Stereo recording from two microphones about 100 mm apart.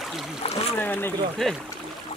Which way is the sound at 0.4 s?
90° left.